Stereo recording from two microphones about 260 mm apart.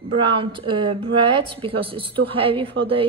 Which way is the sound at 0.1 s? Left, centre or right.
Centre.